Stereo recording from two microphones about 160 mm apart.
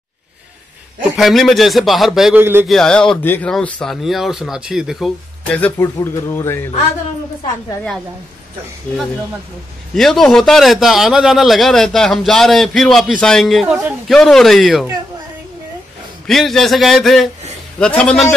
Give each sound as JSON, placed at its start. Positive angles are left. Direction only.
{"t": 1.1, "sound": "a man's voice", "side_deg": 0}
{"t": 5.5, "sound": "a man's voice", "side_deg": 10}
{"t": 9.9, "sound": "a man's voice", "side_deg": 5}
{"t": 16.3, "sound": "a man's voice", "side_deg": 0}